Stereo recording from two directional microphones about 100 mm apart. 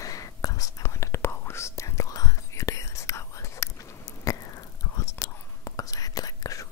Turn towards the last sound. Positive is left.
turn(degrees=35)  # may be behind; listen again after turning